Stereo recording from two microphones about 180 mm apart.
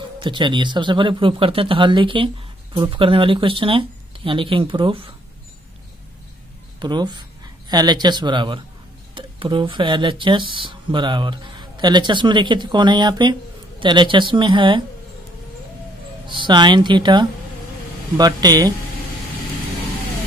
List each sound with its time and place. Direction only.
0.2 s speech: 25° right (ahead or behind)
6.8 s speech: 25° right (ahead or behind)
16.3 s speech: 25° right (ahead or behind)